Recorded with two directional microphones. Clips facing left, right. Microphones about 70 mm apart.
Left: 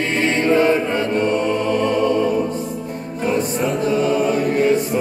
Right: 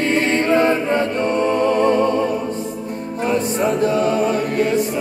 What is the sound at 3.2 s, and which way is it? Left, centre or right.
Music, right.